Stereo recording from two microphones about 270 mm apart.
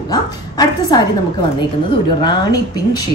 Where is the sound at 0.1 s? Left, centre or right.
Centre.